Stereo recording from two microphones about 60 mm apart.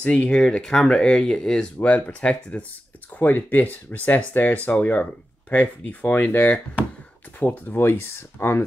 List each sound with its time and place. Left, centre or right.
0.0 s speech: left
0.4 s speech: centre
1.8 s speech: left